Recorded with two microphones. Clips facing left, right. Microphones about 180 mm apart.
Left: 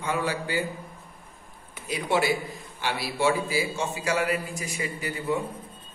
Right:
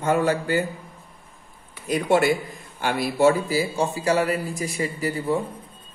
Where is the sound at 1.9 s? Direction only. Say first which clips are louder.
Right 5 dB; 50° right (ahead or behind).